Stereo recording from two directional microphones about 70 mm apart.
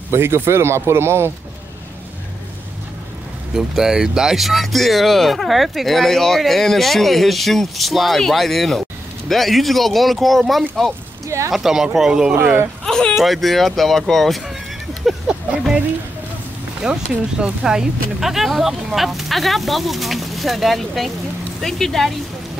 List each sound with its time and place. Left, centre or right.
0.1 s speech: right
3.5 s speech: centre
11.2 s speech: right
11.5 s speech: centre
12.4 s speech: right
12.8 s a sound: centre
13.2 s speech: centre
15.0 s a sound: centre
16.8 s speech: centre